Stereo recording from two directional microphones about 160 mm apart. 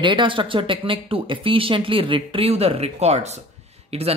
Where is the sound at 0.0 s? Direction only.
30° right (ahead or behind).